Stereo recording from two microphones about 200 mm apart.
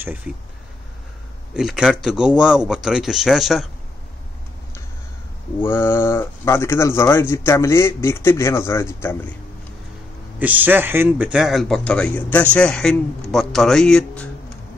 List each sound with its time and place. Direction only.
1.5 s speech: 5° right (ahead or behind)
5.6 s speech: 10° left (ahead or behind)
10.4 s speech: 10° right (ahead or behind)